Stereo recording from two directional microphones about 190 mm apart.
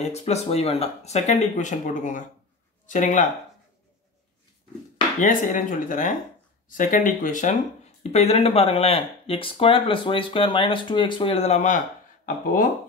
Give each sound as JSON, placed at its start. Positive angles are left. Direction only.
{"t": 0.0, "sound": "speech", "side_deg": 35}
{"t": 5.2, "sound": "speech", "side_deg": 45}